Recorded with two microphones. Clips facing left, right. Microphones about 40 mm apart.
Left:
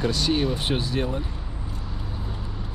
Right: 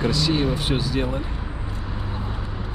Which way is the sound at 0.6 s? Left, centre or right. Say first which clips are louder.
Right 2 dB; left.